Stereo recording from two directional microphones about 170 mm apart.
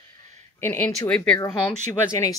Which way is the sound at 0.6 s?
15° left (ahead or behind).